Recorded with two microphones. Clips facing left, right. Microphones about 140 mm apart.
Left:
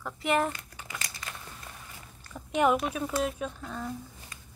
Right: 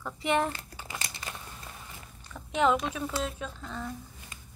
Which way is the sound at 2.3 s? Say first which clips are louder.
Left 1 dB; 10° left (ahead or behind).